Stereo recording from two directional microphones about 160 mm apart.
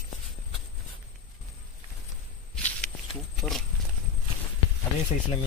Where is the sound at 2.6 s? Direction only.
10° left (ahead or behind).